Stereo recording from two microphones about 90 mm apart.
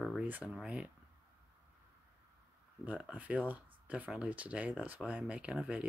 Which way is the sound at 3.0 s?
15° right (ahead or behind).